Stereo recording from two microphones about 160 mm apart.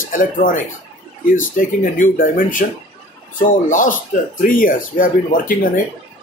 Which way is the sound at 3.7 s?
55° left (ahead or behind).